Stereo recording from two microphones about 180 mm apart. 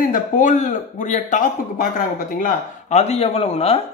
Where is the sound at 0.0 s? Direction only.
45° left (ahead or behind).